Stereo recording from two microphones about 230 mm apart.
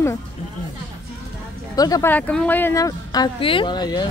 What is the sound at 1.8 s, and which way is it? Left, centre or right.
Speech, centre.